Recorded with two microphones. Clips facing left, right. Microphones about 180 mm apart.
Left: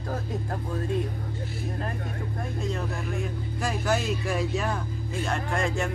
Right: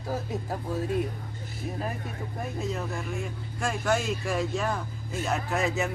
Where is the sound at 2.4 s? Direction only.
5° right (ahead or behind).